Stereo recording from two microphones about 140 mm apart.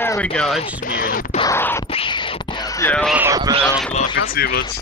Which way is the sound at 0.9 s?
90° left.